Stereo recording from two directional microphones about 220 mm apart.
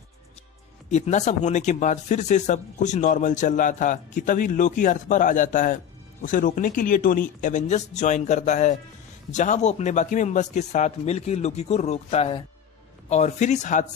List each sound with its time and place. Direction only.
0.8 s speech: 30° left (ahead or behind)